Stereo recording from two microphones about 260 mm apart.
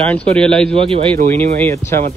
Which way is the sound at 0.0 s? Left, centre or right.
Centre.